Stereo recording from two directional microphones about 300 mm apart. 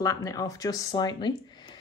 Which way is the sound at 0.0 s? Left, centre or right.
Centre.